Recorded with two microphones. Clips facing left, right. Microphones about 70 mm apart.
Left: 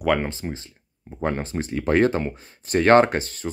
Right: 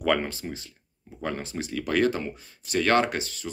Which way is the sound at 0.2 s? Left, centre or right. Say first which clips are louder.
Left 4 dB; left.